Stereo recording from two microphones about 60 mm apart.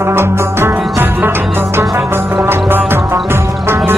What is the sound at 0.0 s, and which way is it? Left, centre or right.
Music, right.